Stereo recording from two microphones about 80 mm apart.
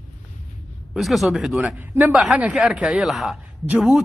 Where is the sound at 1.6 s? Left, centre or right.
Right.